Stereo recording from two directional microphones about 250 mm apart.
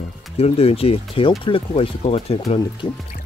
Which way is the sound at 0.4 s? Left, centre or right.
Left.